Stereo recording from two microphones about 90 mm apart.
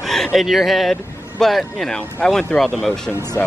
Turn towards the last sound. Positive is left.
turn(degrees=30)  # may be behind; listen again after turning